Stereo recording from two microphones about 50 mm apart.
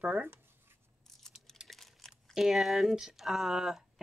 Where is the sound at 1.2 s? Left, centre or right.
Centre.